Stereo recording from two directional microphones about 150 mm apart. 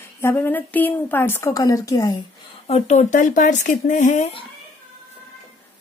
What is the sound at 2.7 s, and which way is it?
Speech, 55° left (ahead or behind).